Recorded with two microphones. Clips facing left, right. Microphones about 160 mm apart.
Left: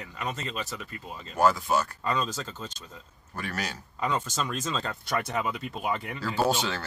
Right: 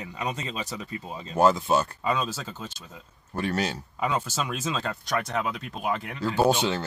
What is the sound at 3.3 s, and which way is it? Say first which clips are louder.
Speech: right 7 dB; 30° right (ahead or behind).